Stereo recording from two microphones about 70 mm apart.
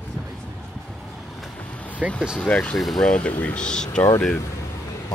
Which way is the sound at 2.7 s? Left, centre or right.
Centre.